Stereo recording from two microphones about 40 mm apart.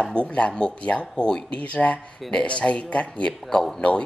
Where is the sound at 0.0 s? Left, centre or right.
Left.